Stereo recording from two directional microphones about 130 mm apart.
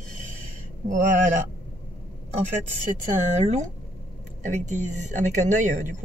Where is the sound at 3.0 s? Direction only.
65° right (ahead or behind).